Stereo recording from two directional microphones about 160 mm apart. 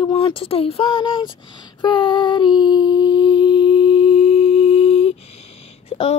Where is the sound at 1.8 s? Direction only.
30° left (ahead or behind).